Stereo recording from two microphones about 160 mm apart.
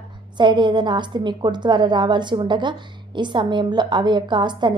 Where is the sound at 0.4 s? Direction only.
30° right (ahead or behind).